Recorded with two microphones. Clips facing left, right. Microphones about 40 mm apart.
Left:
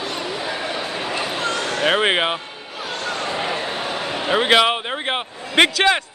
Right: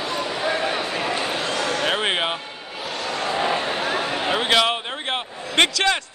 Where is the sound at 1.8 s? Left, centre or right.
Centre.